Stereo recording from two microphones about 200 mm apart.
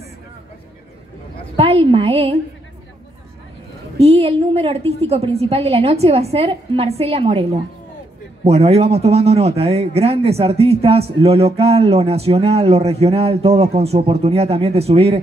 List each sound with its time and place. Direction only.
1.6 s a woman's voice: 30° right (ahead or behind)
4.0 s a woman's voice: 30° right (ahead or behind)